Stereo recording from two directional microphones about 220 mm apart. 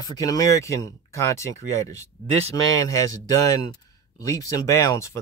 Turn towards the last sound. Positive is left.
turn(degrees=15)  # may be behind; listen again after turning